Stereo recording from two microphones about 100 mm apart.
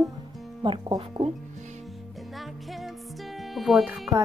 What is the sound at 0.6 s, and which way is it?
Speech, 55° right (ahead or behind).